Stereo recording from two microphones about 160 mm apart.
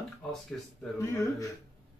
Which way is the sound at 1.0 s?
20° left (ahead or behind).